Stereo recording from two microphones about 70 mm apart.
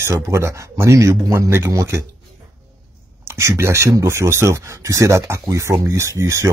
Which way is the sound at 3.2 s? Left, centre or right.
Right.